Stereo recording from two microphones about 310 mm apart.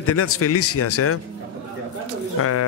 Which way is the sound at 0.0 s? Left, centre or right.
Left.